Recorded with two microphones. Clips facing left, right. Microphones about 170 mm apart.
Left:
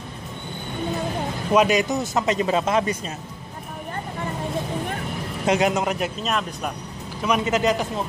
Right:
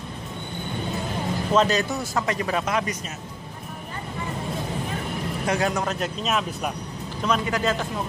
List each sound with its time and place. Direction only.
1.5 s speech: 15° left (ahead or behind)
5.5 s speech: 20° left (ahead or behind)
5.9 s a man's voice: 10° left (ahead or behind)